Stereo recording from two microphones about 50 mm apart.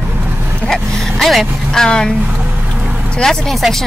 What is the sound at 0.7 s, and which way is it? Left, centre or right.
Speech, centre.